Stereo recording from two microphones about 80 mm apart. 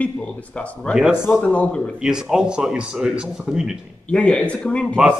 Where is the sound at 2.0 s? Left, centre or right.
Centre.